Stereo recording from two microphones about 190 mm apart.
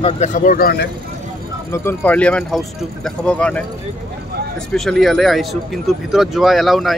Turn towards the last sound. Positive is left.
turn(degrees=0)  # may be behind; listen again after turning